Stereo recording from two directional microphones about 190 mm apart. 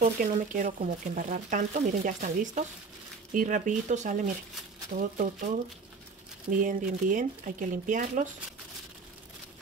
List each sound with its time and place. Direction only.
0.0 s speech: 40° right (ahead or behind)
6.5 s speech: 45° right (ahead or behind)